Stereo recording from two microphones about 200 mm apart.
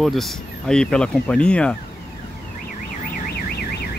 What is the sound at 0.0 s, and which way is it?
Speech, centre (ahead or behind).